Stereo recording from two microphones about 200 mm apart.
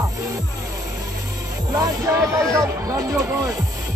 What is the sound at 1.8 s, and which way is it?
Speech, 15° right (ahead or behind).